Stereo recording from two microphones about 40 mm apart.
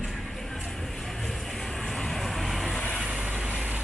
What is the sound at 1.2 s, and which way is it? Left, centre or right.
Vehicle, centre.